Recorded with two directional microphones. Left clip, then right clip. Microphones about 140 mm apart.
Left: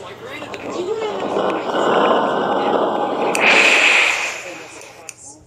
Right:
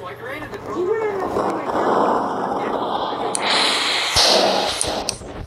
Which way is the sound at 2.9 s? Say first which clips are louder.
Left 4 dB; 85° right.